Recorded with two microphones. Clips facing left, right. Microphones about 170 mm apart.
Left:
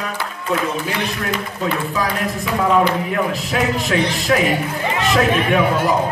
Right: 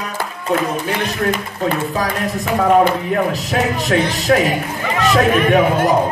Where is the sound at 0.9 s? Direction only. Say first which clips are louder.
Right 3 dB; 45° right (ahead or behind).